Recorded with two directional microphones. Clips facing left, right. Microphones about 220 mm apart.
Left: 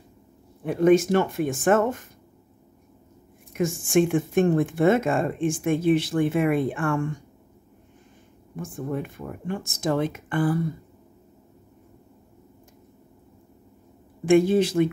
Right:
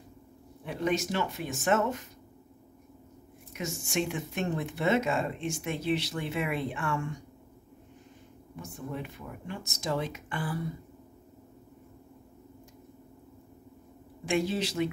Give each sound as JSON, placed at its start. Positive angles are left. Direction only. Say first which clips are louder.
{"t": 0.7, "sound": "speech", "louder": "left 12 dB", "side_deg": 50}
{"t": 3.5, "sound": "speech", "louder": "left 11 dB", "side_deg": 50}
{"t": 8.5, "sound": "speech", "louder": "left 8 dB", "side_deg": 50}
{"t": 14.2, "sound": "speech", "louder": "left 11 dB", "side_deg": 50}